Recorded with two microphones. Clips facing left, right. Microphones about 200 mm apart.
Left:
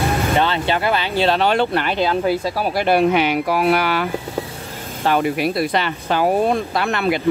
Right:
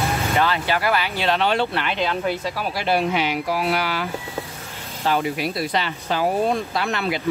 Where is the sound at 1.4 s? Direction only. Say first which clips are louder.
Left 4 dB; 50° left (ahead or behind).